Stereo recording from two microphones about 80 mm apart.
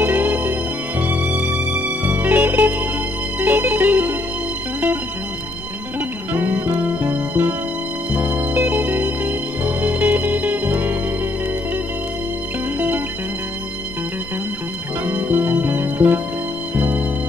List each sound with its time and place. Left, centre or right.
0.0 s music: right
5.9 s music: right
12.7 s music: right
15.0 s music: right